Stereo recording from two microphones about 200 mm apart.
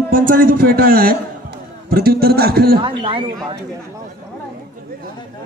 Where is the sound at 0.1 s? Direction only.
45° right (ahead or behind).